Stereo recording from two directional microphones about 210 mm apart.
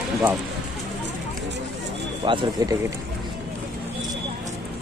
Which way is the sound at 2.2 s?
25° right (ahead or behind).